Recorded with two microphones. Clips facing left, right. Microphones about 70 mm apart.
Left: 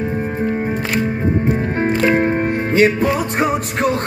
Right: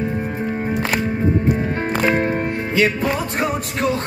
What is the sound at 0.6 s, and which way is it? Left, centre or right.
Music, centre.